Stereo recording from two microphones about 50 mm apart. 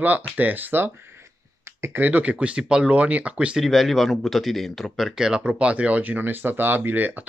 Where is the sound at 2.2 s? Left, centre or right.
Right.